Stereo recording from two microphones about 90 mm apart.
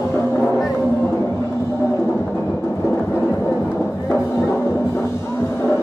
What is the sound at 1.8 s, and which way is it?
Music, 30° left (ahead or behind).